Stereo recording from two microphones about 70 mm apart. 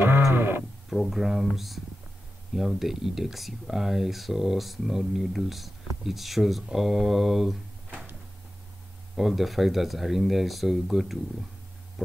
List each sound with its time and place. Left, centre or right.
0.3 s sheep: right
0.8 s speech: centre
9.1 s speech: centre